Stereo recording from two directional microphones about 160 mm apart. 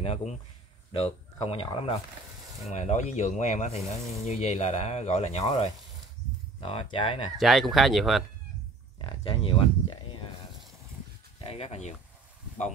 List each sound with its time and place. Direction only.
0.0 s speech: 40° left (ahead or behind)
2.6 s speech: 45° left (ahead or behind)
7.3 s speech: centre (ahead or behind)
9.0 s speech: 30° left (ahead or behind)
11.4 s speech: 40° left (ahead or behind)